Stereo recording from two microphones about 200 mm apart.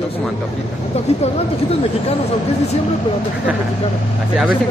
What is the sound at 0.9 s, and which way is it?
Speech, 30° left (ahead or behind).